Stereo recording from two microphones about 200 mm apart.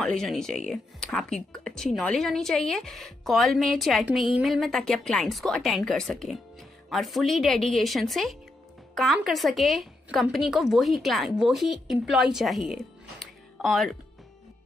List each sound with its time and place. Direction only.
0.0 s a woman's voice: centre (ahead or behind)